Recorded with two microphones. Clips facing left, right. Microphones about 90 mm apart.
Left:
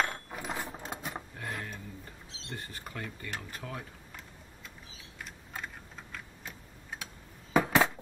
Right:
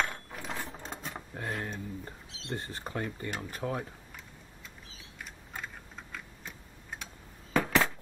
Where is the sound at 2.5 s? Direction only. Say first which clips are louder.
Right 6 dB; 30° right (ahead or behind).